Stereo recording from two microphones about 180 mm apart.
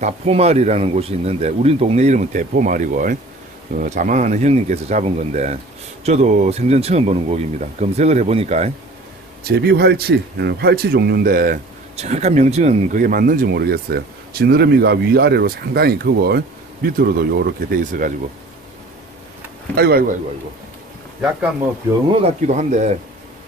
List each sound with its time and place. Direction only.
0.0 s speech: 35° right (ahead or behind)
9.4 s speech: 60° right (ahead or behind)
12.0 s speech: 35° right (ahead or behind); by 18.1 s 55° right (ahead or behind)
19.7 s speech: 60° right (ahead or behind)
21.2 s speech: 10° right (ahead or behind)
22.1 s speech: 40° right (ahead or behind)